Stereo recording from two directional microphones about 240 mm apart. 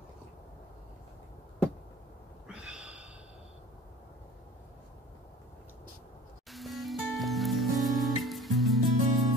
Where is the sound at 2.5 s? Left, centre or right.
Centre.